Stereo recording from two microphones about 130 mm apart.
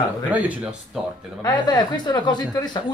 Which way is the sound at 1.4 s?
30° left (ahead or behind).